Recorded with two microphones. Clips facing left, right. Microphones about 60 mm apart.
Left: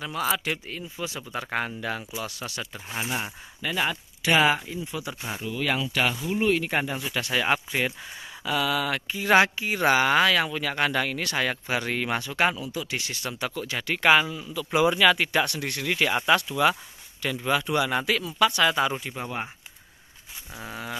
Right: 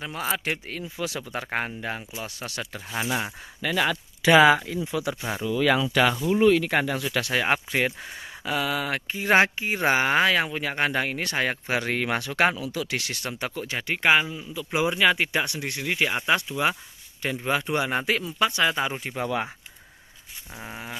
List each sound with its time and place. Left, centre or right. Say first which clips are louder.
0.0 s speech: left 1 dB; right
0.7 s speech: right 2 dB; right
1.3 s speech: even; right
2.4 s speech: right 1 dB; right
4.6 s speech: right 5 dB; right
6.3 s speech: right 4 dB; right
7.3 s speech: even; right
12.5 s speech: right 2 dB; right
13.4 s speech: left 1 dB; right
18.9 s speech: right 3 dB; right
19.2 s speech: right 5 dB; right
20.5 s a sound: left 1 dB; centre